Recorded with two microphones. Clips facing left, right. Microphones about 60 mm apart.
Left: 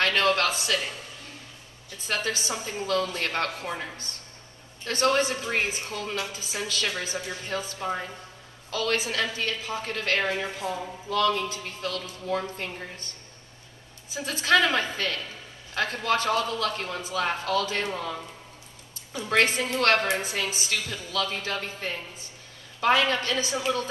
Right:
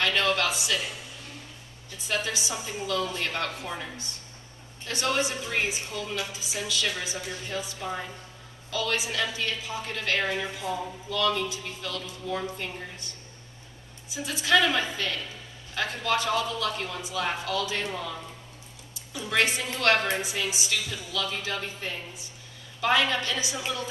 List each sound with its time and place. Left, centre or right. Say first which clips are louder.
0.0 s a woman's voice: left 2 dB; left
2.0 s a woman's voice: left 1 dB; left
3.6 s a woman's voice: left 2 dB; left
4.8 s a woman's voice: left 4 dB; left
14.1 s a woman's voice: left 1 dB; left